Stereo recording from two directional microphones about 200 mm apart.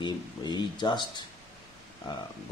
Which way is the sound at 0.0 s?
20° left (ahead or behind).